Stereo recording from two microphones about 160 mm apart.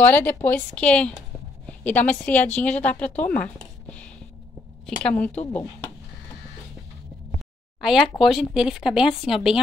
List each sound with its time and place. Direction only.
0.0 s a woman's voice: 10° left (ahead or behind)
3.8 s a sound: 5° left (ahead or behind)
4.8 s a woman's voice: 5° left (ahead or behind)
7.8 s speech: centre (ahead or behind)